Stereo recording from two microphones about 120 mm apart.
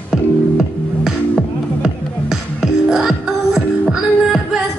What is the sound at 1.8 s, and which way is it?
Music, centre (ahead or behind).